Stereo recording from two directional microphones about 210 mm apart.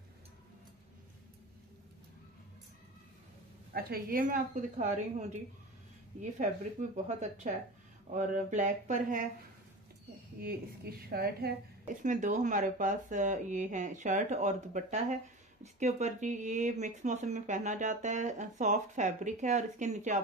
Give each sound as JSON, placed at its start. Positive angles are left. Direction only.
{"t": 3.7, "sound": "a woman's voice", "side_deg": -45}
{"t": 6.4, "sound": "a woman's voice", "side_deg": -35}
{"t": 10.4, "sound": "a woman's voice", "side_deg": -45}